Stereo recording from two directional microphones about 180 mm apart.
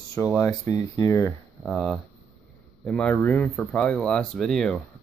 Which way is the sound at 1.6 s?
Centre (ahead or behind).